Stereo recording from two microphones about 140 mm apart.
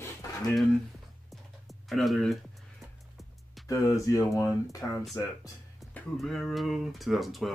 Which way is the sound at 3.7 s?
20° left (ahead or behind).